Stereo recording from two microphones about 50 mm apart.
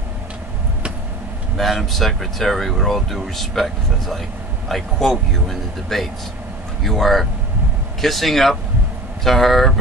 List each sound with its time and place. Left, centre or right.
1.6 s speech: centre